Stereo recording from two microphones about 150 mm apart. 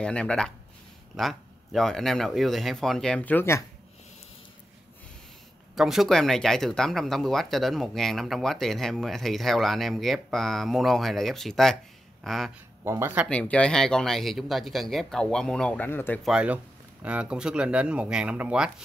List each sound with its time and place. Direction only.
0.0 s speech: 5° left (ahead or behind)
5.8 s speech: centre (ahead or behind)
12.8 s speech: 15° right (ahead or behind)
13.3 s speech: 5° left (ahead or behind)
16.3 s speech: 5° right (ahead or behind)